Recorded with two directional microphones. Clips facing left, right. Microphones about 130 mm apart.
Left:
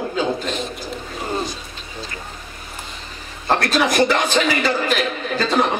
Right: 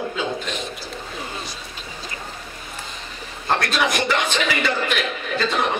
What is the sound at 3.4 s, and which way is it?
A man's voice, 35° left (ahead or behind).